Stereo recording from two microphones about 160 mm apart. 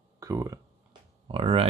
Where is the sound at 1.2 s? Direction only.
35° right (ahead or behind).